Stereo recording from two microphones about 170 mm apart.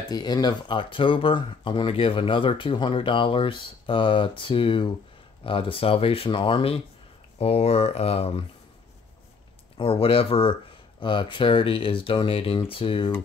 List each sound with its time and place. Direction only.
0.1 s speech: 25° left (ahead or behind)
9.8 s speech: 35° left (ahead or behind)